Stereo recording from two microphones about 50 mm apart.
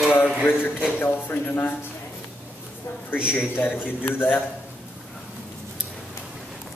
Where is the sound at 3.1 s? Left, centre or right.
Left.